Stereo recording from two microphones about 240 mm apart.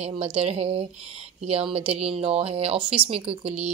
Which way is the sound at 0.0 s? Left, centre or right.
Right.